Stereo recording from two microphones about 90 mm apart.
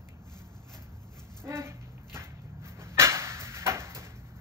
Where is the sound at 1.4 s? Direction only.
30° right (ahead or behind).